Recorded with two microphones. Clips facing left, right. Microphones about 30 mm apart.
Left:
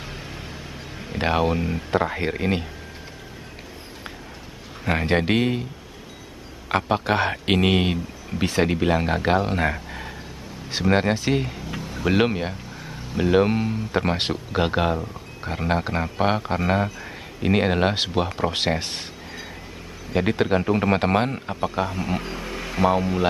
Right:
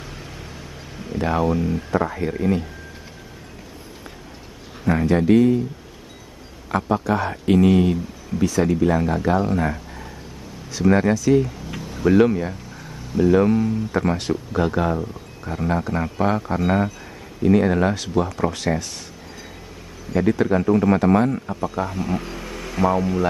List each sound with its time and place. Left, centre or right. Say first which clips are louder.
0.0 s a sound: left 1 dB; left
1.1 s speech: right 1 dB; left
4.8 s speech: right 3 dB; left
6.9 s speech: even; left
11.8 s a sound: right 6 dB; centre
12.1 s speech: right 5 dB; left
12.7 s a sound: right 2 dB; left
13.2 s a man's voice: right 3 dB; left
17.4 s speech: right 3 dB; left
20.1 s a man's voice: right 2 dB; left
21.8 s speech: right 1 dB; left